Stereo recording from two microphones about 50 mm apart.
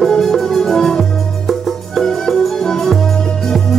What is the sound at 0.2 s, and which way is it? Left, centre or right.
Music, centre.